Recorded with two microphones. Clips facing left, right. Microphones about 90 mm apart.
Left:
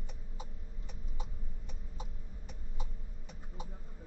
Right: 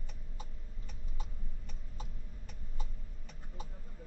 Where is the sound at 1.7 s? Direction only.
15° left (ahead or behind).